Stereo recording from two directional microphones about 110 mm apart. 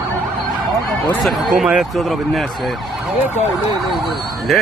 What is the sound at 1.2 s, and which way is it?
Speech, centre (ahead or behind).